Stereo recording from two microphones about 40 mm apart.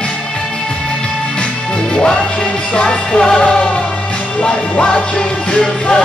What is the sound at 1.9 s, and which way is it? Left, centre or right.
Music, left.